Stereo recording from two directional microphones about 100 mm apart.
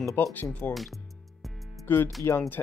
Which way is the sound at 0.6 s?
20° left (ahead or behind).